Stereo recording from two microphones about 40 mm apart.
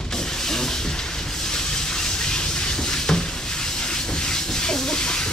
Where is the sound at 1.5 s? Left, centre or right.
Centre.